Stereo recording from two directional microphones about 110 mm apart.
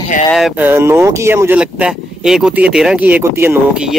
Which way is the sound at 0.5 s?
20° right (ahead or behind).